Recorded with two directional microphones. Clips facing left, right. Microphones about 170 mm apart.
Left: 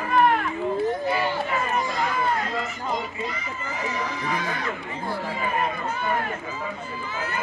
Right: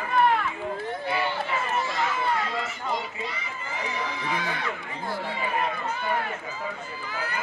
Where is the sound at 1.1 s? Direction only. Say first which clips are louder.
Left 3 dB; 40° left (ahead or behind).